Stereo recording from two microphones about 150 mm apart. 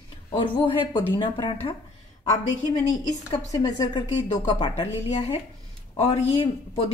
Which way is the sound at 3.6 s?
25° left (ahead or behind).